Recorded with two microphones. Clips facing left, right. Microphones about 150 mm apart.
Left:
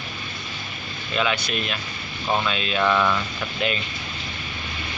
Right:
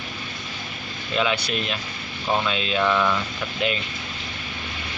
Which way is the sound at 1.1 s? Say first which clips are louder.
Right 1 dB; 25° right (ahead or behind).